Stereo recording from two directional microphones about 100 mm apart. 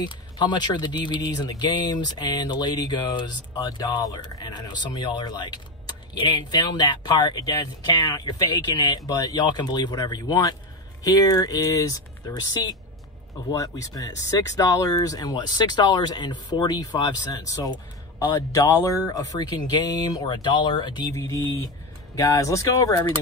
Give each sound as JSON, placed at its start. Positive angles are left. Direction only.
{"t": 0.0, "sound": "speech", "side_deg": 50}
{"t": 18.2, "sound": "speech", "side_deg": 30}
{"t": 21.1, "sound": "speech", "side_deg": 30}